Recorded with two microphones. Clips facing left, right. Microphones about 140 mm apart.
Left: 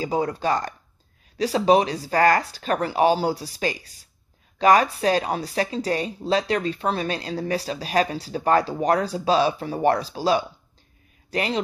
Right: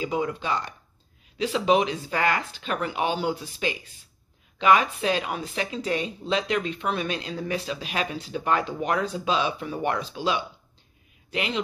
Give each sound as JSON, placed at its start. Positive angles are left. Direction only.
{"t": 0.0, "sound": "speech", "side_deg": 35}